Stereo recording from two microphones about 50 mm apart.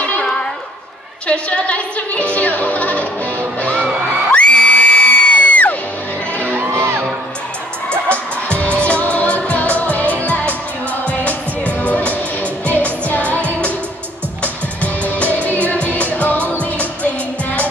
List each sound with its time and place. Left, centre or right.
1.2 s music: left
6.5 s music: right
6.8 s music: right
8.1 s music: left
13.0 s music of asia: left
14.4 s music: left